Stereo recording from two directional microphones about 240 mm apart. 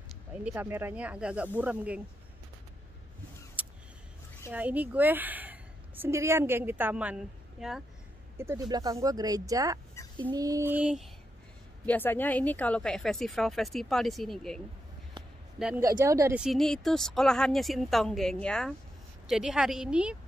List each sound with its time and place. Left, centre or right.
0.3 s speech: centre
3.6 s a sound: centre
4.5 s a woman's voice: centre
8.4 s speech: centre
11.8 s speech: centre
15.6 s speech: centre